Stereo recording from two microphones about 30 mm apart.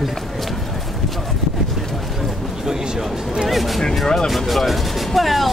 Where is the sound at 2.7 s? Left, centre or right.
Right.